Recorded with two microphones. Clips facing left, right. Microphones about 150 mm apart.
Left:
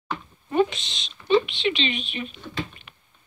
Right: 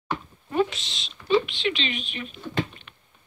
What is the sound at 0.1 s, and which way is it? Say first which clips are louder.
Speech: left 2 dB; centre (ahead or behind).